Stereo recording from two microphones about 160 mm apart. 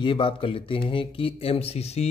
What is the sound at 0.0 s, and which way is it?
Speech, 30° left (ahead or behind).